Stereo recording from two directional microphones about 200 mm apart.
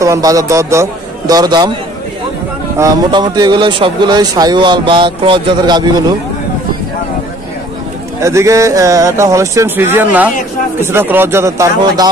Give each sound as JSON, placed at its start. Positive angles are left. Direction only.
{"t": 0.0, "sound": "a man's voice", "side_deg": -15}
{"t": 2.8, "sound": "speech", "side_deg": -20}
{"t": 8.2, "sound": "speech", "side_deg": -15}